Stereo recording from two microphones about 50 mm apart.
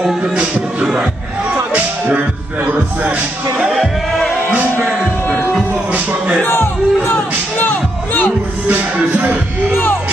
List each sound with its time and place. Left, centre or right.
0.2 s music: right
2.6 s music: right
3.6 s speech: centre
6.4 s speech: left
7.5 s music: left
8.6 s music: right